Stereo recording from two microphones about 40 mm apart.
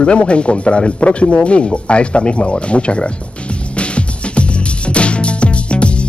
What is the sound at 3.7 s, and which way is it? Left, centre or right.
Music, left.